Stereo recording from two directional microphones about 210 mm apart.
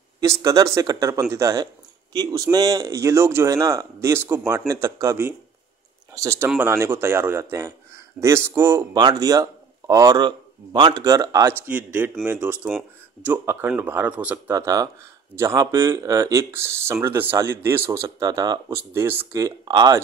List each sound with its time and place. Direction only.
0.2 s speech: 15° right (ahead or behind)